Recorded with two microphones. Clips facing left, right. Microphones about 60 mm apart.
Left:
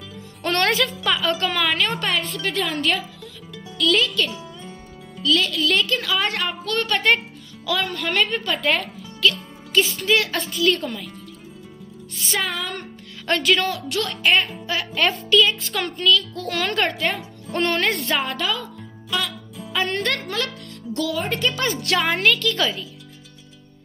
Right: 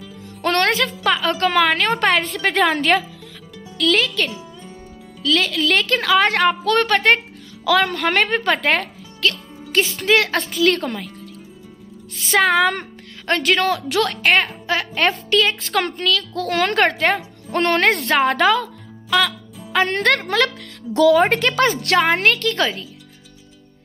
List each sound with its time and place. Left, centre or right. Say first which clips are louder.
1.0 s a woman's voice: right 7 dB; right
5.2 s a woman's voice: right 2 dB; right
7.6 s speech: right 7 dB; right
12.4 s speech: right 11 dB; right
13.4 s a woman's voice: right 3 dB; right
22.1 s a woman's voice: right 2 dB; right